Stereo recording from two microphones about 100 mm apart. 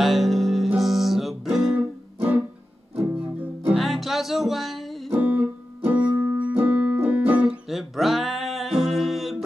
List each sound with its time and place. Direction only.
0.0 s music: centre (ahead or behind)
2.1 s music: 15° right (ahead or behind)
3.7 s music: centre (ahead or behind)
5.2 s music: 15° right (ahead or behind)
7.7 s music: centre (ahead or behind)